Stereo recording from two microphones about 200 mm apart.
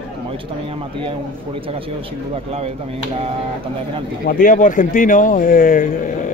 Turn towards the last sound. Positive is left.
turn(degrees=40)  # may be behind; listen again after turning